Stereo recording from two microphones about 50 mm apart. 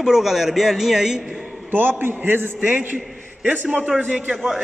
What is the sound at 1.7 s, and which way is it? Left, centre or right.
Speech, right.